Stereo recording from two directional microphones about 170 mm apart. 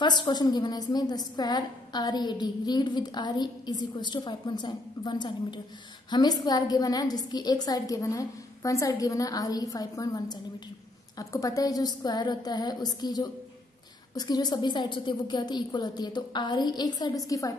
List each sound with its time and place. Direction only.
0.0 s a woman's voice: 25° left (ahead or behind)